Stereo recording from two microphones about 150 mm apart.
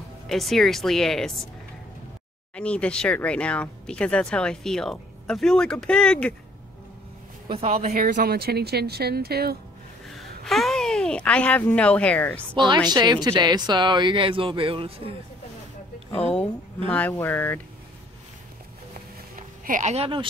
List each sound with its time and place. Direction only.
0.3 s speech: centre (ahead or behind)
2.5 s speech: 10° left (ahead or behind)
7.4 s speech: 45° right (ahead or behind)
8.0 s speech: 70° right (ahead or behind); by 9.6 s 90° right
10.0 s speech: centre (ahead or behind)
12.5 s speech: 30° right (ahead or behind)
16.2 s a woman's voice: 45° left (ahead or behind)
17.2 s speech: 15° left (ahead or behind)
19.3 s a sound: 60° right (ahead or behind); by 20.2 s 40° right (ahead or behind)